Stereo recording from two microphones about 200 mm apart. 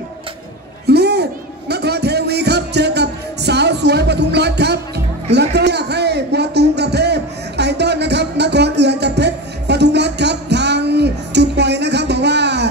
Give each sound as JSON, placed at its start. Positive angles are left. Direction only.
{"t": 0.8, "sound": "music", "side_deg": -55}